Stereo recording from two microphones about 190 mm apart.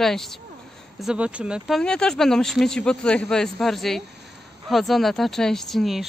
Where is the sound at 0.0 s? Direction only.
Centre (ahead or behind).